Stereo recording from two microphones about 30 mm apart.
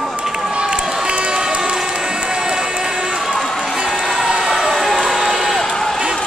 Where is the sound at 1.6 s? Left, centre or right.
Right.